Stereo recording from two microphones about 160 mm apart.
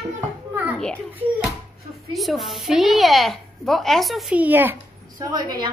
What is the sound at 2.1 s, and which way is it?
Speech, centre (ahead or behind).